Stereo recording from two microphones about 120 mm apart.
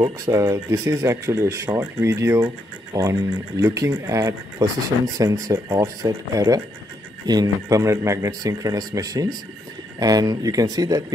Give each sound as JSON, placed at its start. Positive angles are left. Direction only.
{"t": 0.0, "sound": "speech", "side_deg": -25}